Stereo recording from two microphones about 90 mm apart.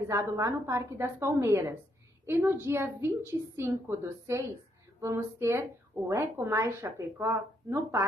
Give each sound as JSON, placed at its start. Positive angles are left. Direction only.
{"t": 0.4, "sound": "a woman's voice", "side_deg": -30}